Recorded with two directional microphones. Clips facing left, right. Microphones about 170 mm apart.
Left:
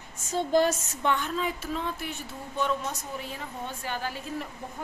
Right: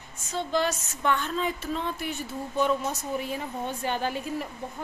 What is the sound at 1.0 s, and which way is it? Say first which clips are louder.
Speech: right 1 dB; 15° left (ahead or behind).